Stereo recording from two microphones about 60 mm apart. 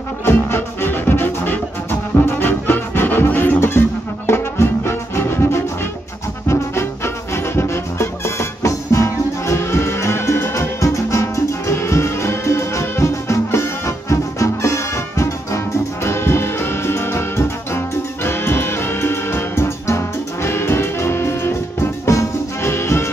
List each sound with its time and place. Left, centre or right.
0.2 s music: left